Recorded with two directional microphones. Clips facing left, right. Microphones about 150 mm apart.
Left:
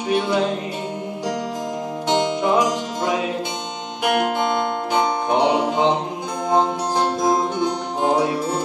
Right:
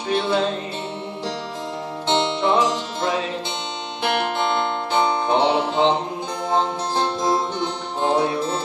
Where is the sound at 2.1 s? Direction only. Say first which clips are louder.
Left 1 dB; 10° left (ahead or behind).